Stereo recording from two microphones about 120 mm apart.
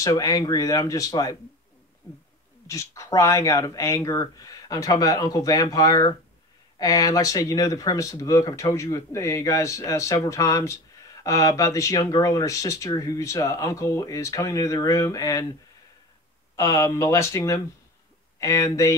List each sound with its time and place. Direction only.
0.0 s speech: 25° left (ahead or behind)
2.6 s speech: 25° left (ahead or behind)
16.5 s speech: 25° left (ahead or behind)